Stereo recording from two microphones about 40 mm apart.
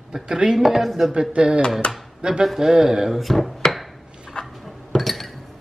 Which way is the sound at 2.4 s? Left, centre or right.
Centre.